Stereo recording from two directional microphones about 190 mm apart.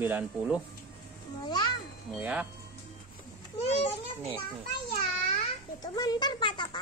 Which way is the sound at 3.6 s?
35° left (ahead or behind).